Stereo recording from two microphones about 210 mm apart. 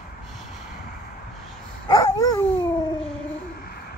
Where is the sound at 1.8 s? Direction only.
20° left (ahead or behind).